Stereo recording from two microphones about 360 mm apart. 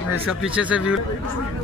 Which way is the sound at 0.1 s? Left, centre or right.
Centre.